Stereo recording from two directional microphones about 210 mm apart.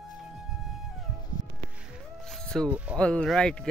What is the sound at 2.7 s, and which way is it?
Speech, 5° right (ahead or behind).